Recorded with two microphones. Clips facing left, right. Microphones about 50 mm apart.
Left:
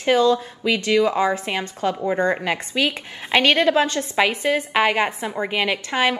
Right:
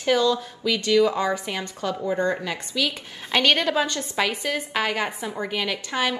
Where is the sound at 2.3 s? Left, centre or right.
Left.